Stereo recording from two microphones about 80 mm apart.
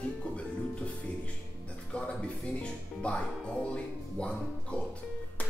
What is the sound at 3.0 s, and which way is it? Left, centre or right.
Speech, centre.